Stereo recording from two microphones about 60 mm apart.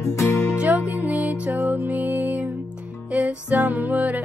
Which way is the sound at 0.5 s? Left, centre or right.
Right.